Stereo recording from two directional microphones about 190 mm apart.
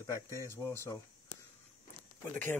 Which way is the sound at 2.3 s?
10° left (ahead or behind).